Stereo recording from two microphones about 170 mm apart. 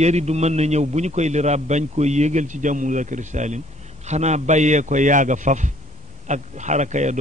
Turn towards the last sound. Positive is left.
turn(degrees=-45)  # may be behind; listen again after turning